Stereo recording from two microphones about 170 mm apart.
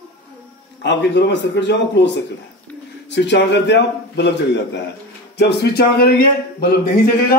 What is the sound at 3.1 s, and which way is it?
A man's voice, 90° left.